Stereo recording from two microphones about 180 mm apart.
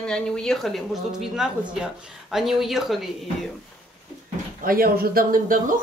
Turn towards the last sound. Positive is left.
turn(degrees=-50)  # may be behind; listen again after turning